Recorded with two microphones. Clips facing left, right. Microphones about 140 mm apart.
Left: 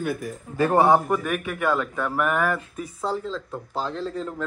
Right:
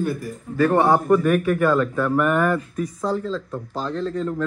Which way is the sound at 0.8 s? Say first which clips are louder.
Even; 5° left (ahead or behind).